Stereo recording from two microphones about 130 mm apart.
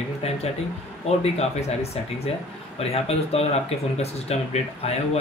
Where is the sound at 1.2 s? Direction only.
55° left (ahead or behind).